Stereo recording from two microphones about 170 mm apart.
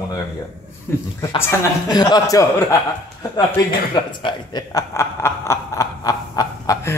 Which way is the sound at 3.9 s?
30° left (ahead or behind).